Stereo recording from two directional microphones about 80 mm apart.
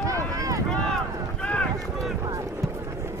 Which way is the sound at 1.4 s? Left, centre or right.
Centre.